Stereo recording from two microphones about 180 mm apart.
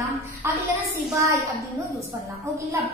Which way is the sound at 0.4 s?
15° right (ahead or behind).